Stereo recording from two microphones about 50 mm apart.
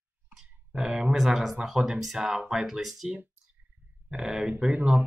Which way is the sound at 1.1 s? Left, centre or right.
Centre.